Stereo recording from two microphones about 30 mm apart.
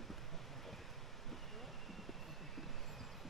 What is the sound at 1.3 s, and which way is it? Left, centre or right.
Vehicle, centre.